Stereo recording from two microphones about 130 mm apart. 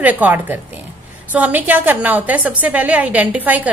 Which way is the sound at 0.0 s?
15° right (ahead or behind).